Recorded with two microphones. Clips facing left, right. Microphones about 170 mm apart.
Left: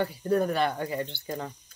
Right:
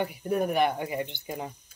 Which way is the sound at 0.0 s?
15° right (ahead or behind).